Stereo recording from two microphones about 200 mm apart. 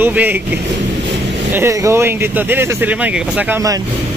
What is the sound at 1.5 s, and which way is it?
Speech, 15° right (ahead or behind).